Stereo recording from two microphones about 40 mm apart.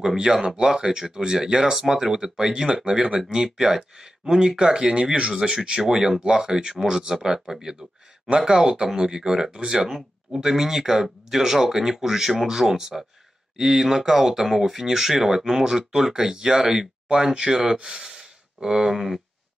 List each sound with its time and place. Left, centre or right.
0.0 s speech: centre
9.8 s speech: centre